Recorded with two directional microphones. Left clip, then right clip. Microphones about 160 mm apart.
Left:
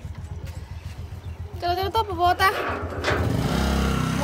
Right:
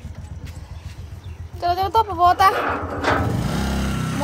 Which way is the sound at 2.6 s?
30° right (ahead or behind).